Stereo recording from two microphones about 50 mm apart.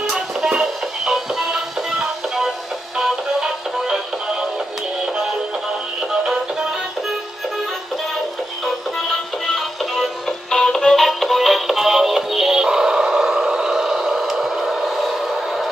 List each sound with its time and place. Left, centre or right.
0.1 s music: centre
9.6 s music: centre
10.5 s music: centre
13.3 s a sound: centre